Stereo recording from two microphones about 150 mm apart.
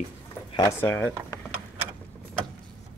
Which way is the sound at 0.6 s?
15° left (ahead or behind).